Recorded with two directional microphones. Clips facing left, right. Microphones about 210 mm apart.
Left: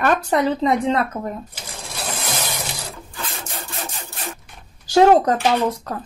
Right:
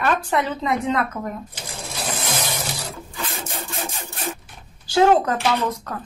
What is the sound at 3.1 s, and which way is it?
Wood, 5° right (ahead or behind).